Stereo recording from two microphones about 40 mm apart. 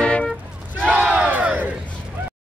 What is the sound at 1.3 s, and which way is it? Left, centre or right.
Battle cry, right.